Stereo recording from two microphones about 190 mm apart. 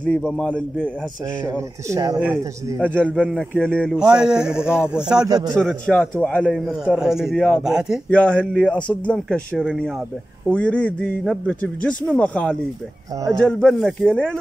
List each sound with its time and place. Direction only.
0.0 s a man's voice: 5° left (ahead or behind)
1.4 s speech: 15° right (ahead or behind)
2.9 s a man's voice: 5° left (ahead or behind)
5.3 s a man's voice: 20° right (ahead or behind)
5.6 s a man's voice: 5° left (ahead or behind)